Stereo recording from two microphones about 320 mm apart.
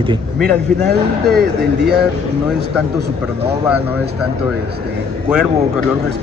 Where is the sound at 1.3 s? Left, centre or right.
Right.